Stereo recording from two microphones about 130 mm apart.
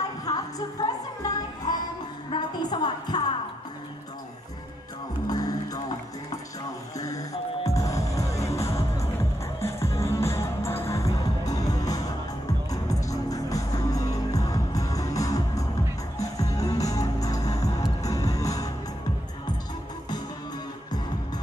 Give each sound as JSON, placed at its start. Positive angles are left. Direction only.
{"t": 0.2, "sound": "music", "side_deg": 30}
{"t": 2.3, "sound": "music", "side_deg": 35}
{"t": 5.3, "sound": "music", "side_deg": 30}
{"t": 7.0, "sound": "music", "side_deg": 25}